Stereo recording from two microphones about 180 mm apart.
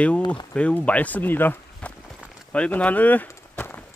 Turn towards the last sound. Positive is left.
turn(degrees=10)  # may be behind; listen again after turning